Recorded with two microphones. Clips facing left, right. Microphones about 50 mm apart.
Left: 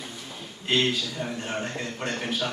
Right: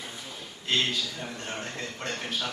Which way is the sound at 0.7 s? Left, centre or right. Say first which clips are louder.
Left 3 dB; centre.